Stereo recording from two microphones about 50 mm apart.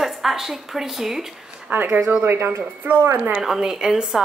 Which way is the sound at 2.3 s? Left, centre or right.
Right.